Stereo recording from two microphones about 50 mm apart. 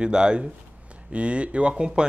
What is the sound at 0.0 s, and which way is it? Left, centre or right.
Speech, centre.